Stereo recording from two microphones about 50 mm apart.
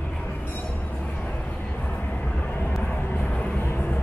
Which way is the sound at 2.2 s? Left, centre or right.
Left.